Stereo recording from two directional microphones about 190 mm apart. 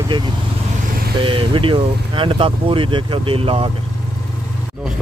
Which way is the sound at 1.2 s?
25° right (ahead or behind).